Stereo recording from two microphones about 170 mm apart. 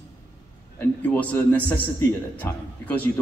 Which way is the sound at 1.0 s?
10° left (ahead or behind).